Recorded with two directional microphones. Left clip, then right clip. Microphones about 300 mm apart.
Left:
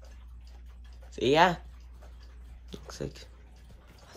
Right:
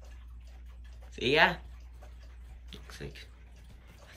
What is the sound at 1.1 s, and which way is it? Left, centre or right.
Speech, centre.